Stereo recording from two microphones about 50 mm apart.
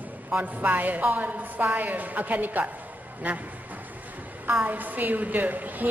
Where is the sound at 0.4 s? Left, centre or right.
Right.